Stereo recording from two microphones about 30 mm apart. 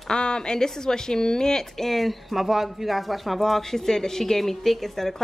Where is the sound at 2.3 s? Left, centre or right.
Centre.